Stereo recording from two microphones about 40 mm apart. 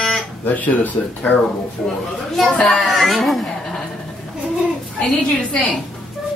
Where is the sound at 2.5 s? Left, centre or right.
Centre.